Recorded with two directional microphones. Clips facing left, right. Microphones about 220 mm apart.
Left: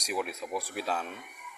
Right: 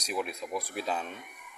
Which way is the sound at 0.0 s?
5° left (ahead or behind).